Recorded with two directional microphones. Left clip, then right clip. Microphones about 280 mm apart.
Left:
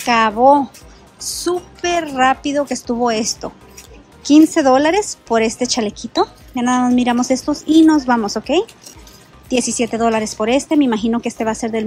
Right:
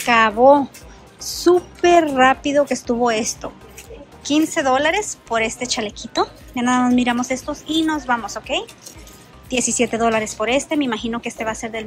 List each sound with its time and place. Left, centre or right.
0.0 s a woman's voice: centre